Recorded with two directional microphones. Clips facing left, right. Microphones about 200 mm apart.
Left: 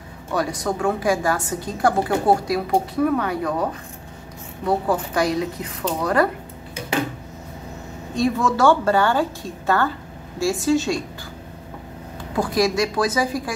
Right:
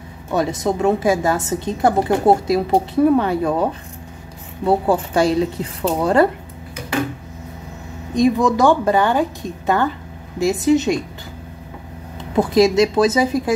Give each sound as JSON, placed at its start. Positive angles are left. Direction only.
{"t": 0.3, "sound": "a woman's voice", "side_deg": -25}
{"t": 4.6, "sound": "a woman's voice", "side_deg": -30}
{"t": 8.1, "sound": "a woman's voice", "side_deg": -15}
{"t": 12.2, "sound": "a woman's voice", "side_deg": -20}